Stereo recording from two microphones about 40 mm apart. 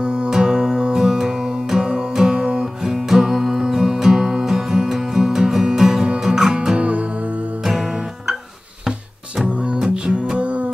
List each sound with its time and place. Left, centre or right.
0.0 s music: right
6.8 s music: right
7.6 s music: centre
9.4 s music: right